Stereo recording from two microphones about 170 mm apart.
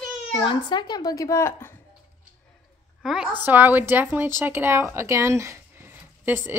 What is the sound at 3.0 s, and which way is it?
A woman's voice, 5° right (ahead or behind).